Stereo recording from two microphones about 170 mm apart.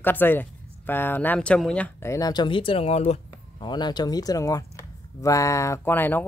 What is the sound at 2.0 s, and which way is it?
Speech, 20° left (ahead or behind).